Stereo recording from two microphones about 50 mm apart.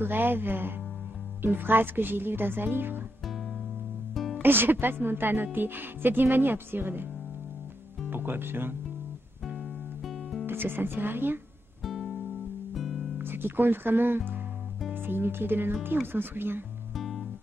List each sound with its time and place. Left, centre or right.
0.0 s a woman's voice: right
4.1 s music: centre
4.4 s a woman's voice: right
8.1 s a woman's voice: right
9.6 s music: centre
10.4 s speech: right
11.8 s music: centre
13.2 s a woman's voice: right
16.9 s music: centre